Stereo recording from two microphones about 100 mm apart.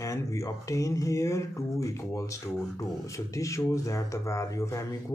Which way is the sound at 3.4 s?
30° left (ahead or behind).